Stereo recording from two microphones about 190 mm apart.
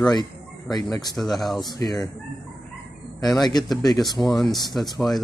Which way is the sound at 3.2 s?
20° left (ahead or behind).